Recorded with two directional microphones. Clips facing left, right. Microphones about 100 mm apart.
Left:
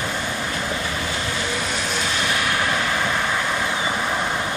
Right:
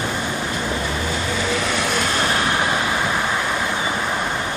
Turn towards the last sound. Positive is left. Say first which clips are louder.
# right 2 dB
turn(degrees=-15)  # may be behind; listen again after turning